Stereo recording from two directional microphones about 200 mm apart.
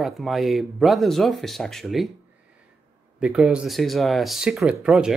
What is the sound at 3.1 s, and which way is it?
Speech, 5° right (ahead or behind).